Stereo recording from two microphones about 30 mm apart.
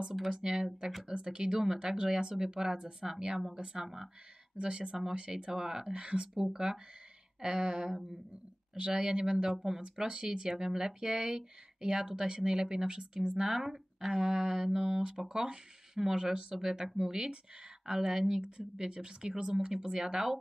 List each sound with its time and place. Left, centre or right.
0.3 s speech: right
4.6 s speech: right
5.3 s speech: centre
6.3 s speech: centre
9.5 s speech: centre
9.8 s speech: right
10.6 s speech: centre
13.4 s speech: centre
15.0 s speech: right